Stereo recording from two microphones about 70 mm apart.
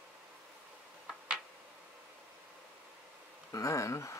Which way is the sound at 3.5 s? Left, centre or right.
Left.